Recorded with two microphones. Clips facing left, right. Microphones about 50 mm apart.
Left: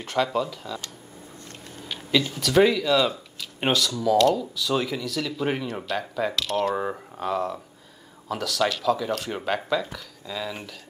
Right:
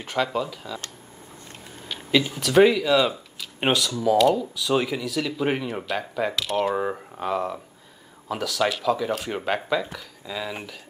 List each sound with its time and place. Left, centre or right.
0.0 s speech: centre
2.0 s speech: centre